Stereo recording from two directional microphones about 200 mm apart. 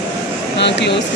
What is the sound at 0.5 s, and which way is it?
Speech, 60° left (ahead or behind).